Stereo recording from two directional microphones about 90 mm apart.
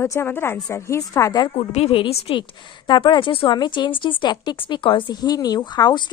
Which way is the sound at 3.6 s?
60° left (ahead or behind).